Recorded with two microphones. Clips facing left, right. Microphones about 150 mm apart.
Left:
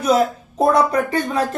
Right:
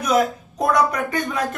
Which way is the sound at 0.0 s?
30° left (ahead or behind).